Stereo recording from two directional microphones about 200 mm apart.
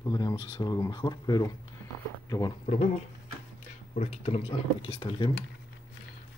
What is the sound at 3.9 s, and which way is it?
Speech, 35° left (ahead or behind).